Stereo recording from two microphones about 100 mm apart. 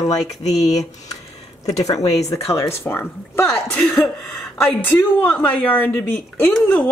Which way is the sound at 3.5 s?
5° left (ahead or behind).